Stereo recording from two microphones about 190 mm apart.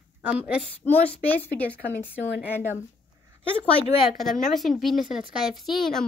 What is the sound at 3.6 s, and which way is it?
Speech, 5° left (ahead or behind).